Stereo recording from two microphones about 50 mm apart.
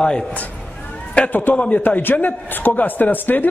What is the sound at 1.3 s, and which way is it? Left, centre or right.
Speech, left.